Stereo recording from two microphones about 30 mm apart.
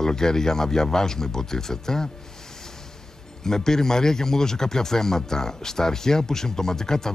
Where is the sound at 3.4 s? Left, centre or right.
Centre.